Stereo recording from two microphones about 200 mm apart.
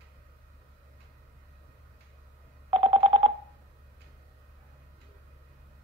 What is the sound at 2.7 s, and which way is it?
Telephone dialing, 25° right (ahead or behind).